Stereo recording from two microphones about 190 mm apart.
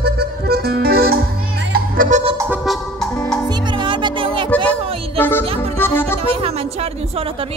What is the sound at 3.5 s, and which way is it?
Music, 25° right (ahead or behind).